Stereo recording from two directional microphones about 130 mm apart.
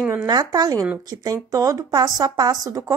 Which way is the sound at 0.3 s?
30° right (ahead or behind).